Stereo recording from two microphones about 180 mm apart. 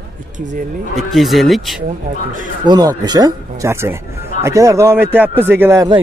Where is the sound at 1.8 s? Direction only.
45° right (ahead or behind).